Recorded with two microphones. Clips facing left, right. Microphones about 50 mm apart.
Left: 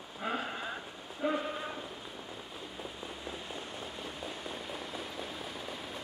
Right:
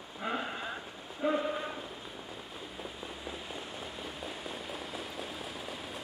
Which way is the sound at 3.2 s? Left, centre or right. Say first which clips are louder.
Even; centre.